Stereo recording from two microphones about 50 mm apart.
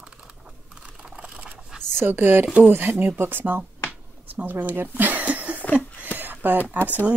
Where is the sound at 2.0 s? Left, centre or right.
Right.